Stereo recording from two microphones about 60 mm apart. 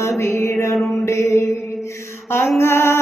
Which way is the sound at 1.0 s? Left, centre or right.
Left.